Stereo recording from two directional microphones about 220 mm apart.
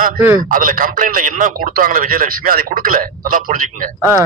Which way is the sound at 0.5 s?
40° right (ahead or behind).